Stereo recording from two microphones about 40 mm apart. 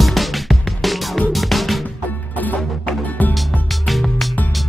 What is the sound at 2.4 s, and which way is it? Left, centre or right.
Music, left.